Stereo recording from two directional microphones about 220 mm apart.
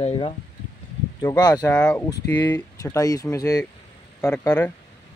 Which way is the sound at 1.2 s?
15° left (ahead or behind).